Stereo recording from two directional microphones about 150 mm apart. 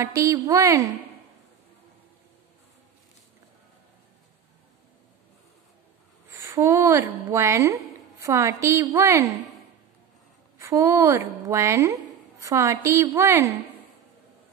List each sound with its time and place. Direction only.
0.0 s a woman's voice: 20° right (ahead or behind)
6.3 s a woman's voice: 20° right (ahead or behind)
10.6 s a woman's voice: 20° right (ahead or behind)